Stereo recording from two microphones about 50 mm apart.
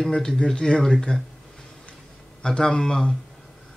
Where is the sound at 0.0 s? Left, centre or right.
Centre.